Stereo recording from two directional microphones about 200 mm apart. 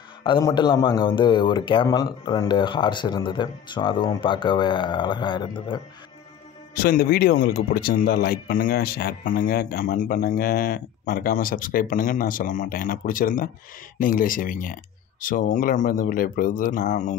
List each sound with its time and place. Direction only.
0.2 s speech: 20° left (ahead or behind)
6.7 s speech: 50° left (ahead or behind)